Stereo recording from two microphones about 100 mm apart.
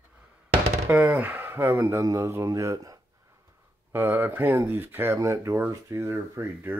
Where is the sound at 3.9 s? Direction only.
20° right (ahead or behind).